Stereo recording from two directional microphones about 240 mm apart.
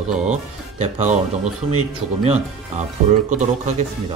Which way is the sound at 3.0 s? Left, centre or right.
Right.